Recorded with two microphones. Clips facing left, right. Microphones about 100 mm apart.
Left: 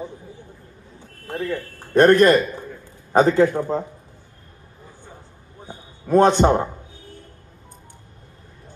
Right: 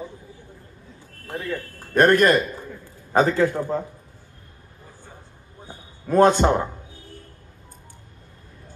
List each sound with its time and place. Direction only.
1.2 s speech: centre (ahead or behind)
2.0 s a man's voice: 30° left (ahead or behind)
5.7 s a sound: 25° left (ahead or behind)